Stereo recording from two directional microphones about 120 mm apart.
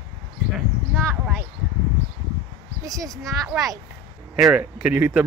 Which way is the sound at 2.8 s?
30° right (ahead or behind).